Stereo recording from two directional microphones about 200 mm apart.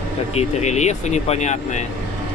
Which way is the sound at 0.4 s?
35° left (ahead or behind).